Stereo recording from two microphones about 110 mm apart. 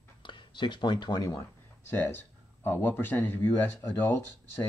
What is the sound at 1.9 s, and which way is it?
Speech, 20° left (ahead or behind).